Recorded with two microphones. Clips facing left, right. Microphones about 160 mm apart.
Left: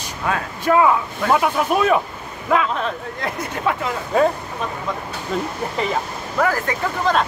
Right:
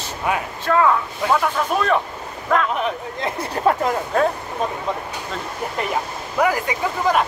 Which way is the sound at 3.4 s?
35° right (ahead or behind).